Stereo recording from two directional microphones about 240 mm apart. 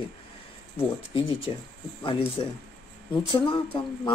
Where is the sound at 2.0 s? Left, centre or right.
Left.